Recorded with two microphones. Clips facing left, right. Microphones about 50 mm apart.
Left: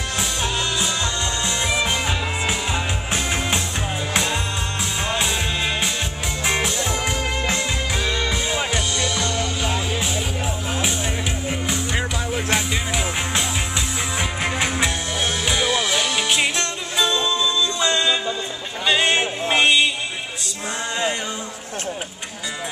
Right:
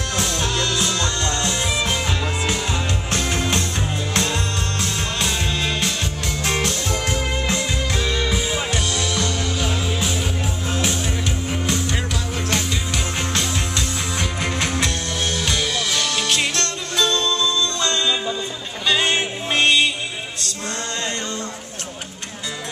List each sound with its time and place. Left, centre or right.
0.2 s music: centre
6.4 s music: centre